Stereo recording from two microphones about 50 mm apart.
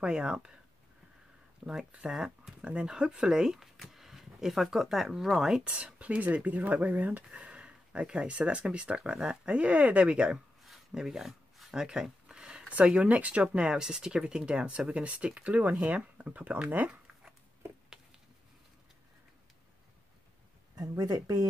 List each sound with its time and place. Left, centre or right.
0.0 s speech: centre
1.9 s speech: centre; by 7.2 s right
7.2 s speech: right
10.6 s a sound: centre
12.7 s speech: right